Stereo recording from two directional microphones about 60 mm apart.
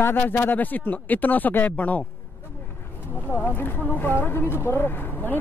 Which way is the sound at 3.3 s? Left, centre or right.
Left.